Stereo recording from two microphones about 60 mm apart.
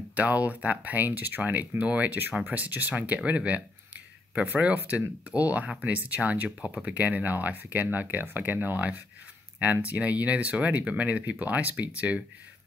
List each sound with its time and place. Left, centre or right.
0.1 s speech: right